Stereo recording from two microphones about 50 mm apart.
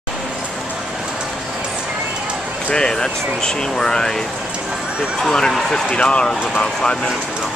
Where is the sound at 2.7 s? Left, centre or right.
Centre.